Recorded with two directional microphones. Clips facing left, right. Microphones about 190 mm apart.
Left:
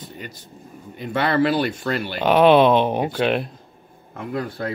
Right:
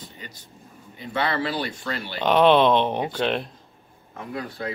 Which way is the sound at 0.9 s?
55° left (ahead or behind).